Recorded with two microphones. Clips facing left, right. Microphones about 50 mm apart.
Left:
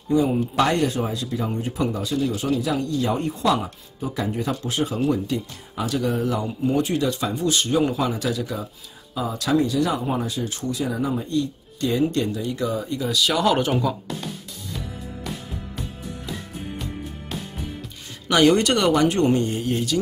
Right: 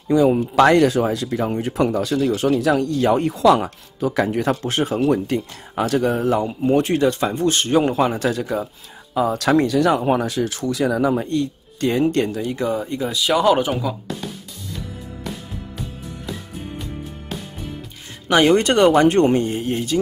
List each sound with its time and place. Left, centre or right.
0.1 s speech: right
1.2 s speech: right
9.1 s speech: right
10.1 s speech: right
11.2 s speech: right
13.2 s speech: centre
18.3 s speech: right